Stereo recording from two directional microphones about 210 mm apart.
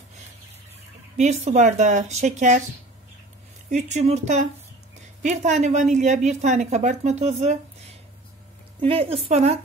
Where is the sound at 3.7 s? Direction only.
35° right (ahead or behind).